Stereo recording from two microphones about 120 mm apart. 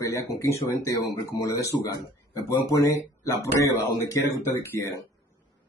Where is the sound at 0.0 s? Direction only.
25° left (ahead or behind).